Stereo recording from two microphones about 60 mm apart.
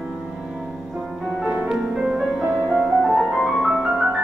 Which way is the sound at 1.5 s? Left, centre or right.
Centre.